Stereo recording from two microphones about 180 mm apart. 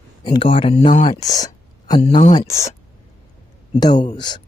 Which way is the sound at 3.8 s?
25° left (ahead or behind).